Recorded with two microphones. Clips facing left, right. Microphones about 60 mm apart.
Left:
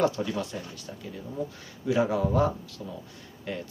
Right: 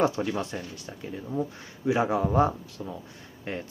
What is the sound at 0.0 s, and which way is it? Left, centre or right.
Speech, right.